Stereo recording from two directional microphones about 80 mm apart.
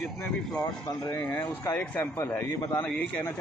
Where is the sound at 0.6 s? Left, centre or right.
Left.